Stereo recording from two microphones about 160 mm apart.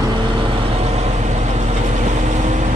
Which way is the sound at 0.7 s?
40° right (ahead or behind).